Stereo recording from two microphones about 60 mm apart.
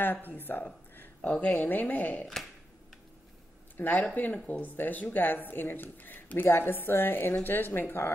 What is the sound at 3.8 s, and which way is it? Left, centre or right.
Speech, left.